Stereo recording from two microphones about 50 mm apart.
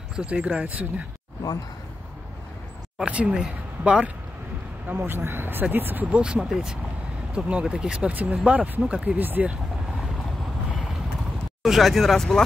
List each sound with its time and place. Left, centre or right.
0.1 s speech: right
3.1 s speech: right
4.8 s speech: right
6.1 s speech: right
6.5 s speech: centre
7.3 s speech: right
8.1 s speech: right
11.6 s speech: centre